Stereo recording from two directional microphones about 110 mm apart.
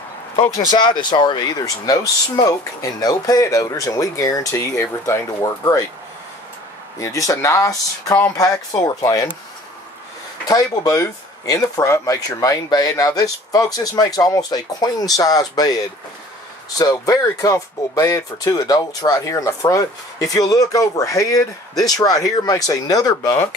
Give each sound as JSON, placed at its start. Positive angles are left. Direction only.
{"t": 0.4, "sound": "speech", "side_deg": 45}
{"t": 7.0, "sound": "speech", "side_deg": 30}
{"t": 10.5, "sound": "speech", "side_deg": 30}